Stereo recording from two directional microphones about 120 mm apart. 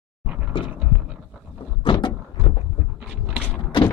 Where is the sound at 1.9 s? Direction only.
45° left (ahead or behind).